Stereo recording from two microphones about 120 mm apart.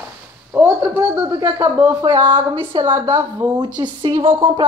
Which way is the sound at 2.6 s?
45° right (ahead or behind).